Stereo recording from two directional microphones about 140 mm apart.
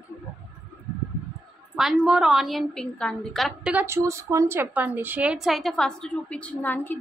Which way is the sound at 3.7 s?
15° right (ahead or behind).